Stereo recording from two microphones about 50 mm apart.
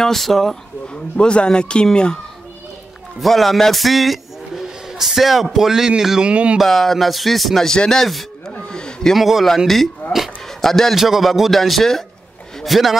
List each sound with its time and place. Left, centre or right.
0.0 s speech: centre
0.8 s speech: left
3.2 s a man's voice: centre
6.3 s speech: right
6.6 s speech: centre
7.7 s speech: centre
8.5 s a sound: centre
9.1 s speech: centre
10.0 s speech: left
10.6 s a man's voice: centre
11.0 s speech: centre